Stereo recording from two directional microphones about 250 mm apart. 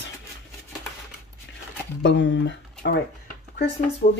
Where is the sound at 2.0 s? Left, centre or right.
Left.